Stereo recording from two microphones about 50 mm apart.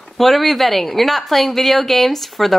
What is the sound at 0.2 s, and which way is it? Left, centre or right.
A woman's voice, centre.